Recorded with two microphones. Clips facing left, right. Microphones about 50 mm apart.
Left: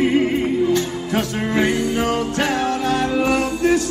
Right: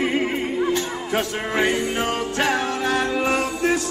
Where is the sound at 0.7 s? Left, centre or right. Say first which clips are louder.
Left 3 dB; centre.